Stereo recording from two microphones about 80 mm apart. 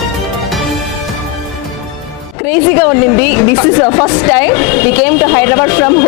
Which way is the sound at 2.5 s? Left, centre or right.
Left.